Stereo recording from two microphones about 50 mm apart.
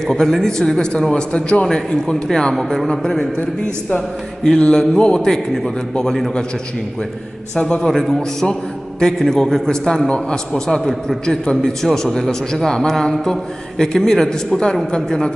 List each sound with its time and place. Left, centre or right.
0.0 s a man's voice: centre
7.5 s a man's voice: centre